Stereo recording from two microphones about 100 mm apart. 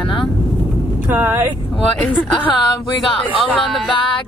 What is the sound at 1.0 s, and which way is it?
Speech, 20° right (ahead or behind).